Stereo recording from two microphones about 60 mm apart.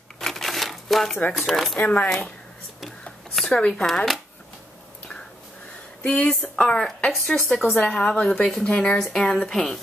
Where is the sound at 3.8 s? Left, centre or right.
Centre.